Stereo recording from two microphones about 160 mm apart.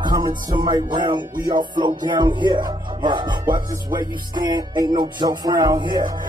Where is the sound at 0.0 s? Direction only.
25° right (ahead or behind).